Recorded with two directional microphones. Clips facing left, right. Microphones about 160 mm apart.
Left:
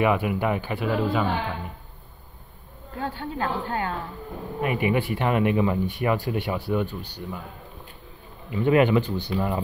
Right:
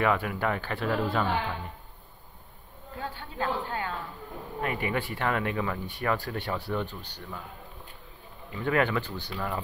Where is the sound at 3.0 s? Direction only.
55° left (ahead or behind).